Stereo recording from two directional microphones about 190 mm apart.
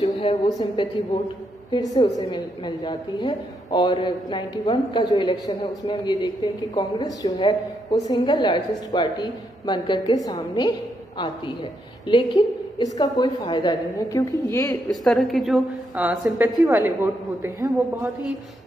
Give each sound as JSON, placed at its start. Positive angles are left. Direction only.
{"t": 0.0, "sound": "a sound", "side_deg": 30}
{"t": 0.5, "sound": "a woman's voice", "side_deg": 20}
{"t": 2.1, "sound": "a woman's voice", "side_deg": 25}
{"t": 14.9, "sound": "a woman's voice", "side_deg": 0}